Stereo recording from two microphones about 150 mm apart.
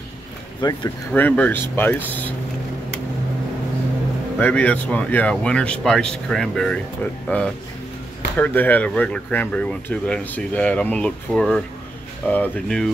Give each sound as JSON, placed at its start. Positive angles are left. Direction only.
{"t": 0.6, "sound": "speech", "side_deg": 25}
{"t": 1.1, "sound": "speech", "side_deg": 10}
{"t": 4.4, "sound": "speech", "side_deg": 10}